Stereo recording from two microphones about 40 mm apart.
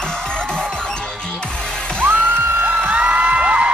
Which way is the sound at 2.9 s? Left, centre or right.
Right.